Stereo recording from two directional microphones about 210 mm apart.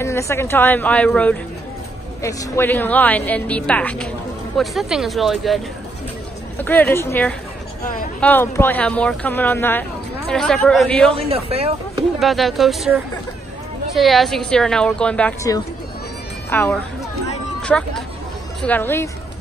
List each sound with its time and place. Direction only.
0.0 s a woman's voice: 15° left (ahead or behind)
6.6 s speech: 10° left (ahead or behind)
11.2 s speech: 25° right (ahead or behind)
12.2 s a woman's voice: centre (ahead or behind)